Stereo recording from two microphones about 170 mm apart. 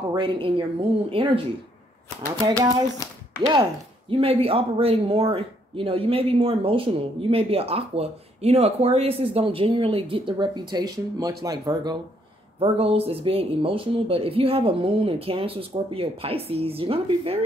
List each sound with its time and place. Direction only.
0.1 s speech: 30° right (ahead or behind)
2.4 s speech: 20° right (ahead or behind)
4.1 s speech: 35° right (ahead or behind)
12.5 s speech: 35° right (ahead or behind)